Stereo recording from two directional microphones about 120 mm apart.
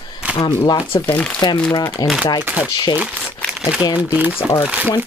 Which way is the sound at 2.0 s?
35° left (ahead or behind).